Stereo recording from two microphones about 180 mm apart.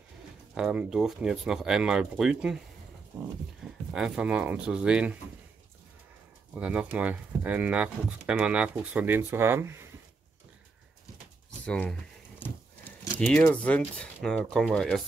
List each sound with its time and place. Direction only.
0.6 s speech: 5° right (ahead or behind)
3.6 s speech: 5° right (ahead or behind)
6.5 s speech: 5° right (ahead or behind)
11.6 s a sound: 5° left (ahead or behind)
13.2 s speech: 5° left (ahead or behind)